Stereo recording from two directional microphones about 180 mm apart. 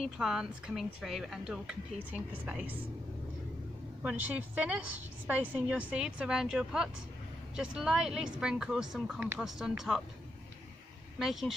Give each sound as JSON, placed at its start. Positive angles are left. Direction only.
{"t": 0.0, "sound": "speech", "side_deg": 0}
{"t": 4.0, "sound": "a woman's voice", "side_deg": -10}
{"t": 11.1, "sound": "speech", "side_deg": 0}